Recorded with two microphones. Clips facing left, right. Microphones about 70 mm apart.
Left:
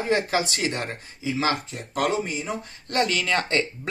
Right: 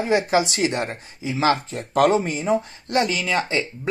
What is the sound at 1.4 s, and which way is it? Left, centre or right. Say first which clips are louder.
Speech: right 7 dB; right.